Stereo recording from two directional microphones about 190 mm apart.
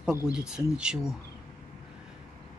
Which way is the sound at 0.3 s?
5° right (ahead or behind).